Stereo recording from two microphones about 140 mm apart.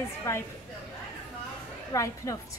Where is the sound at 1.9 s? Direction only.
25° left (ahead or behind).